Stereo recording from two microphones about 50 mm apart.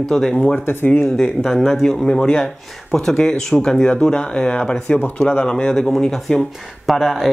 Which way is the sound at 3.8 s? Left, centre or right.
Left.